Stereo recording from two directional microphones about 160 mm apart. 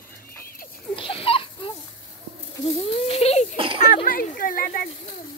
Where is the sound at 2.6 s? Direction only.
40° left (ahead or behind).